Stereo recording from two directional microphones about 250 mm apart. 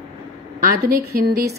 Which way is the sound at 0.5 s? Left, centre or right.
Right.